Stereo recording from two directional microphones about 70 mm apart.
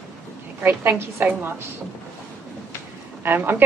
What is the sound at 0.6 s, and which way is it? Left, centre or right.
A woman's voice, right.